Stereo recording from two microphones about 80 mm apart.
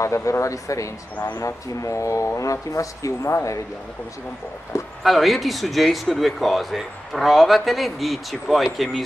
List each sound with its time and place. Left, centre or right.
0.0 s speech: left
5.0 s speech: centre